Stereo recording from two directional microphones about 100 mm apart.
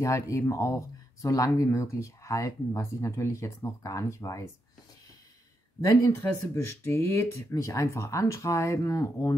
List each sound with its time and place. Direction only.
0.0 s speech: 30° left (ahead or behind)
5.8 s speech: 35° left (ahead or behind)